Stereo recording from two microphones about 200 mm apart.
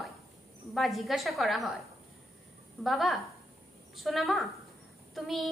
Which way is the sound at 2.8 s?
Centre (ahead or behind).